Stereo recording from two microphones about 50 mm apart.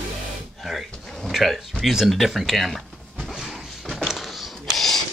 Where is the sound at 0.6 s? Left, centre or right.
Centre.